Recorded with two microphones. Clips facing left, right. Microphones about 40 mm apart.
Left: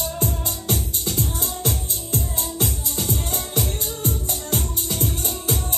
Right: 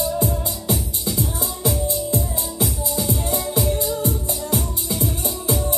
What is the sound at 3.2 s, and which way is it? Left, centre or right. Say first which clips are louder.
Music: right 5 dB; left.